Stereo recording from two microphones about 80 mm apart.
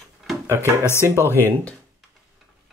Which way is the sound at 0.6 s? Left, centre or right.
Left.